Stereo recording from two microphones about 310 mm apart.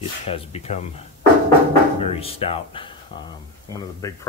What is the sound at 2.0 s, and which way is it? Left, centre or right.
Speech, centre.